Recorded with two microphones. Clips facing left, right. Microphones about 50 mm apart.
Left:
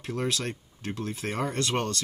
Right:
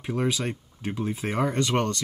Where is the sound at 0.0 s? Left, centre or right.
Centre.